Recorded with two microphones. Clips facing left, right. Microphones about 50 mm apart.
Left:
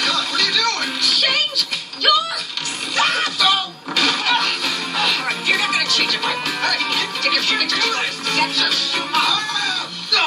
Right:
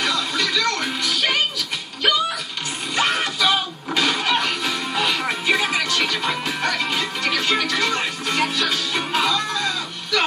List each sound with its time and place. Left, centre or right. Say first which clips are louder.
0.0 s music: left 2 dB; centre
3.0 s music: left 2 dB; centre